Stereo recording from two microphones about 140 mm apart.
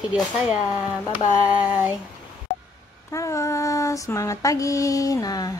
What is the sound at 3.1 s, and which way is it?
A woman's voice, 20° left (ahead or behind).